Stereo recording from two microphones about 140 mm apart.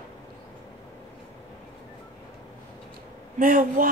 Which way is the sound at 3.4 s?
70° right (ahead or behind).